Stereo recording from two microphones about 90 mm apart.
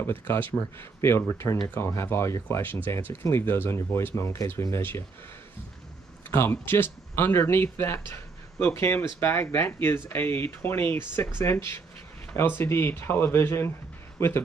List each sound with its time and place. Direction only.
0.0 s speech: 25° left (ahead or behind)
6.3 s speech: 25° left (ahead or behind)